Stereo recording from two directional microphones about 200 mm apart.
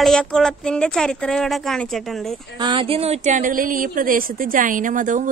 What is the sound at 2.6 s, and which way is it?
A woman's voice, 25° right (ahead or behind).